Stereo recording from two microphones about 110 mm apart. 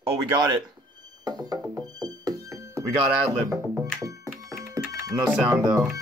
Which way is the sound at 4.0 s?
30° right (ahead or behind).